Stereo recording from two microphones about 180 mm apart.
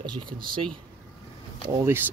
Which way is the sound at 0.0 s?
25° right (ahead or behind).